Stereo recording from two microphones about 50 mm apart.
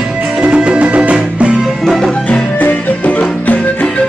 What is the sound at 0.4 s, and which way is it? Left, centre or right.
Music, right.